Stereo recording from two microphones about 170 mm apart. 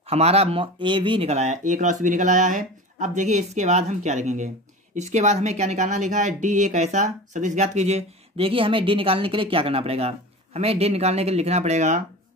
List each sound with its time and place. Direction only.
0.0 s speech: 35° right (ahead or behind)